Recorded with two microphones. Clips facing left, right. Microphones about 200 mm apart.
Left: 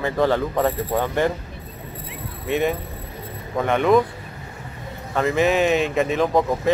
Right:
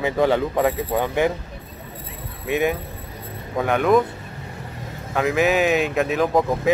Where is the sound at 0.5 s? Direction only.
Centre (ahead or behind).